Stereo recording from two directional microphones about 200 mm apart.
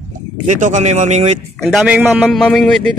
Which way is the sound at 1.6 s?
Centre (ahead or behind).